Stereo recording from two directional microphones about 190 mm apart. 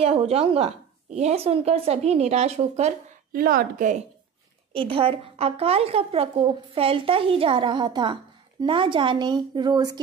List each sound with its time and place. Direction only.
0.0 s speech: 30° right (ahead or behind)
3.3 s a woman's voice: 50° right (ahead or behind)
4.7 s speech: 25° right (ahead or behind)